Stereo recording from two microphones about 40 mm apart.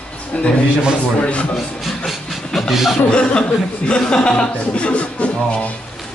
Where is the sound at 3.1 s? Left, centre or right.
Left.